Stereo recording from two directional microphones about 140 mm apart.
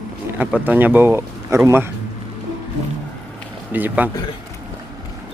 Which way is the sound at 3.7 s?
10° right (ahead or behind).